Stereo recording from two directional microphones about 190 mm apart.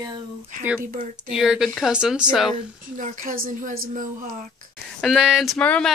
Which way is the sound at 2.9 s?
40° right (ahead or behind).